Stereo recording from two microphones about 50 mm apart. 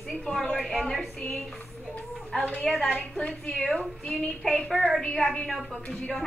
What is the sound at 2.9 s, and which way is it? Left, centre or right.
A woman's voice, centre.